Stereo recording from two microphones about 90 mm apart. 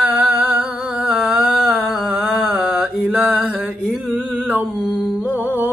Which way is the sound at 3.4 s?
15° right (ahead or behind).